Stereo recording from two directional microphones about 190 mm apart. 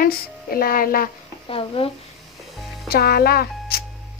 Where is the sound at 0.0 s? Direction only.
50° left (ahead or behind).